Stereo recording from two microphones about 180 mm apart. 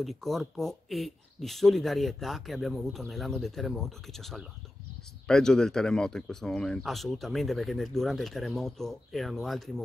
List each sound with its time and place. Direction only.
0.0 s speech: centre (ahead or behind)